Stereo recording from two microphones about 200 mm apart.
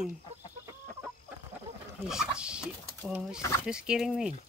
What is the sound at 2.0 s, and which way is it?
Speech, 5° right (ahead or behind).